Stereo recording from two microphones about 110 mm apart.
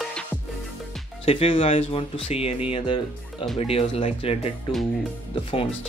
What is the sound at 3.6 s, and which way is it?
Speech, 60° left (ahead or behind).